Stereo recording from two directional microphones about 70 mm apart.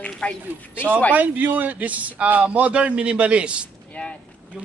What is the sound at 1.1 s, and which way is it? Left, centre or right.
A man's voice, right.